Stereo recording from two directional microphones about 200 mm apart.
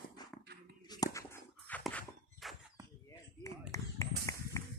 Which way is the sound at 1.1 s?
15° left (ahead or behind).